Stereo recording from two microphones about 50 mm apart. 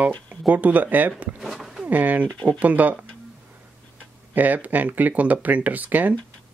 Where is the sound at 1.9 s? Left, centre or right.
Right.